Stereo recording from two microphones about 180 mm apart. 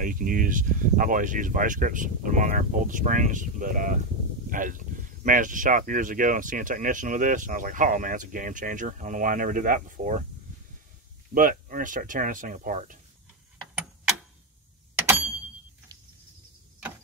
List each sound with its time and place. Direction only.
0.0 s speech: 50° right (ahead or behind)
11.3 s speech: 50° right (ahead or behind)
15.0 s a sound: 10° right (ahead or behind)